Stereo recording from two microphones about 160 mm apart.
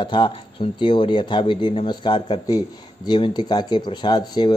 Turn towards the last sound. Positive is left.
turn(degrees=25)  # may be behind; listen again after turning